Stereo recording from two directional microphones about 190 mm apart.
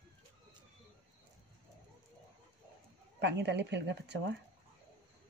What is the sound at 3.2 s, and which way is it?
Speech, 65° right (ahead or behind).